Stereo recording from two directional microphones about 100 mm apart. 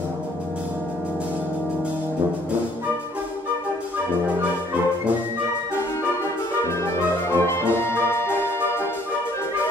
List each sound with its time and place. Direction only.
7.2 s music: 25° left (ahead or behind)